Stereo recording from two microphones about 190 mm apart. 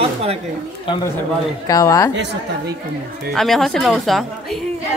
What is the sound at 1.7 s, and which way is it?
Speech, 15° left (ahead or behind).